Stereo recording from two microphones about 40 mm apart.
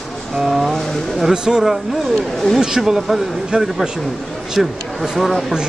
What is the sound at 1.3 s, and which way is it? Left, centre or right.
Speech, centre.